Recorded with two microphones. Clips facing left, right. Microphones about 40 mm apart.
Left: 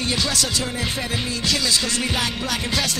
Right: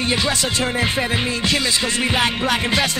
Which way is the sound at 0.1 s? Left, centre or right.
Right.